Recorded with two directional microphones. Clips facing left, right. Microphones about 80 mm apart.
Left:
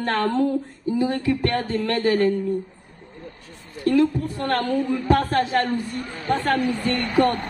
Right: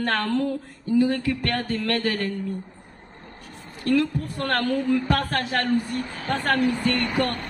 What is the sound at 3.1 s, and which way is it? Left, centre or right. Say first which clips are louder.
Vehicle: left 6 dB; right.